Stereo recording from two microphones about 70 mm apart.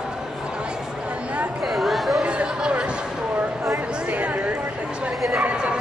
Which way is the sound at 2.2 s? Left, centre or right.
Centre.